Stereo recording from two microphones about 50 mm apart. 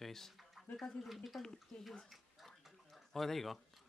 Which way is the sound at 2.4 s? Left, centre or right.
Centre.